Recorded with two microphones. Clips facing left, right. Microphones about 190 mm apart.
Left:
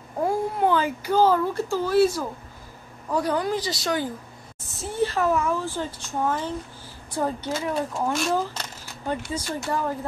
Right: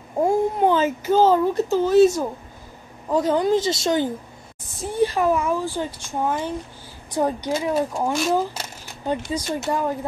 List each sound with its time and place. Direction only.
0.2 s speech: 20° right (ahead or behind)
8.1 s speech: centre (ahead or behind)
8.4 s speech: 15° right (ahead or behind)